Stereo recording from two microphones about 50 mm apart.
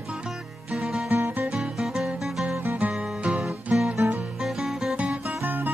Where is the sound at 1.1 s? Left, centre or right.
Right.